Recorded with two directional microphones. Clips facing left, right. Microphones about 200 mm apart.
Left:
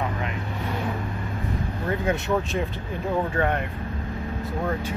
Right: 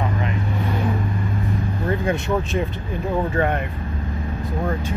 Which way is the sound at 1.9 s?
5° left (ahead or behind).